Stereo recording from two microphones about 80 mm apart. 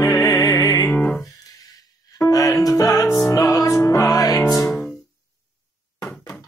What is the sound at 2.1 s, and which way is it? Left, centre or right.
Music, left.